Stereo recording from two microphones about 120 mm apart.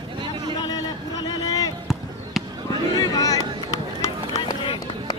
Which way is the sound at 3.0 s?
30° left (ahead or behind).